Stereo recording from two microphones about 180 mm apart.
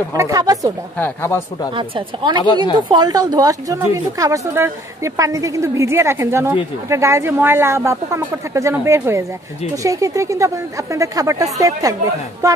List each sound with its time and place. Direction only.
0.1 s a woman's voice: 20° right (ahead or behind)
0.9 s speech: 10° left (ahead or behind)
1.7 s a woman's voice: 25° right (ahead or behind)
2.4 s a woman's voice: 25° left (ahead or behind)
2.9 s a woman's voice: 20° right (ahead or behind)